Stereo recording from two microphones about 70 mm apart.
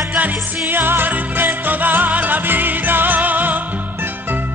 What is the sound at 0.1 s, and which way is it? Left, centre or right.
Music, right.